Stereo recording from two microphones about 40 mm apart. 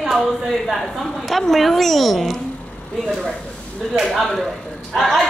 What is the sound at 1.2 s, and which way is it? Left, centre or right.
A woman's voice, centre.